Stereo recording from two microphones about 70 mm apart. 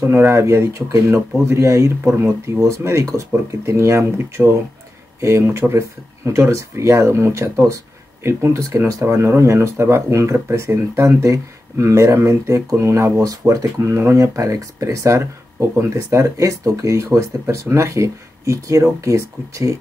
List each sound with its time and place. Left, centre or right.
0.0 s speech: right
2.6 s speech: right
4.4 s speech: centre
5.2 s speech: right